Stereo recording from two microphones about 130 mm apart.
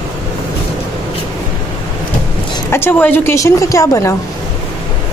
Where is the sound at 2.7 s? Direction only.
15° left (ahead or behind).